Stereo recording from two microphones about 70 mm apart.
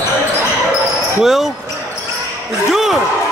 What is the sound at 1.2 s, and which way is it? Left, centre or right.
Speech, centre.